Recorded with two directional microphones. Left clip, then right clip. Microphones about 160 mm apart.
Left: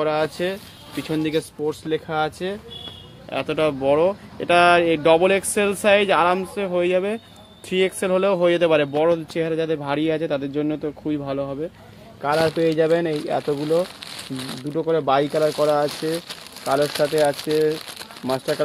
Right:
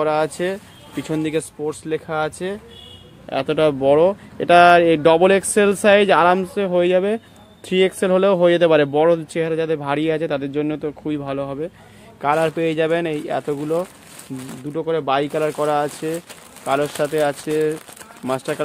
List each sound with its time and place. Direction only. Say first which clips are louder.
0.0 s speech: right 2 dB; 20° right (ahead or behind)
3.3 s speech: right 4 dB; 35° right (ahead or behind)
9.3 s a man's voice: right 2 dB; 20° right (ahead or behind)
12.4 s speech: left 1 dB; centre (ahead or behind)
15.3 s speech: even; 10° right (ahead or behind)